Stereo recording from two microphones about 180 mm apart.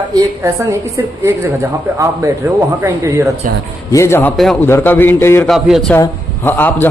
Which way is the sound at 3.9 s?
15° left (ahead or behind).